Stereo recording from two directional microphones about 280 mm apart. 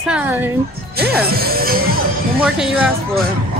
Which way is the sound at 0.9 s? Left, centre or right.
Right.